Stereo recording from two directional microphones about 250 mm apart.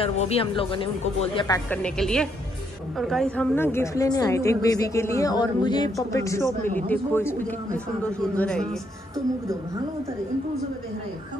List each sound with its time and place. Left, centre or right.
0.0 s speech: left
1.7 s a woman's voice: centre